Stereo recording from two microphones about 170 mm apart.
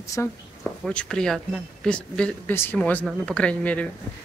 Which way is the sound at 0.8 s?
5° left (ahead or behind).